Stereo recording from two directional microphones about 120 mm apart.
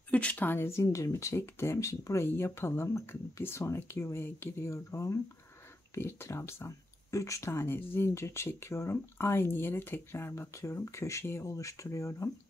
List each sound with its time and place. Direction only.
0.1 s speech: 15° left (ahead or behind)